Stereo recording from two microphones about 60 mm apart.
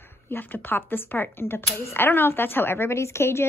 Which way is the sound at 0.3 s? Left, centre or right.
Left.